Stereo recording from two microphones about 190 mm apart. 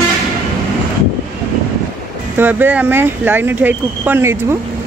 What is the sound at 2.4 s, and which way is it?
Speech, 10° right (ahead or behind).